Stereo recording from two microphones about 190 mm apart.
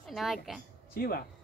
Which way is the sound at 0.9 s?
50° left (ahead or behind).